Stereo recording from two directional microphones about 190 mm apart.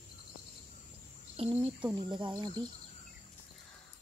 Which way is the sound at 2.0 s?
25° right (ahead or behind).